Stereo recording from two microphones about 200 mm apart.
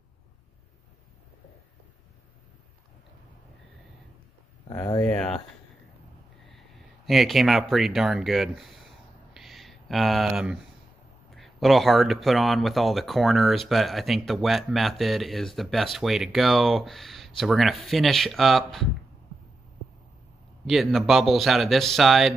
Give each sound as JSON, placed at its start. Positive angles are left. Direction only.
{"t": 4.6, "sound": "speech", "side_deg": 20}
{"t": 7.1, "sound": "speech", "side_deg": 0}
{"t": 9.3, "sound": "a sound", "side_deg": 0}
{"t": 11.3, "sound": "speech", "side_deg": 0}
{"t": 20.6, "sound": "speech", "side_deg": 0}